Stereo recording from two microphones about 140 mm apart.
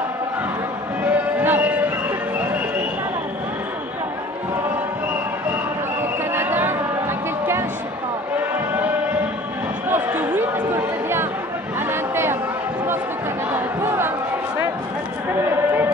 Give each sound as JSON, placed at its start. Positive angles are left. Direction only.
{"t": 1.0, "sound": "music", "side_deg": -10}
{"t": 6.3, "sound": "basketball bounce", "side_deg": -15}
{"t": 9.8, "sound": "a sound", "side_deg": -15}
{"t": 11.9, "sound": "chatter", "side_deg": -15}
{"t": 13.5, "sound": "crowd", "side_deg": -15}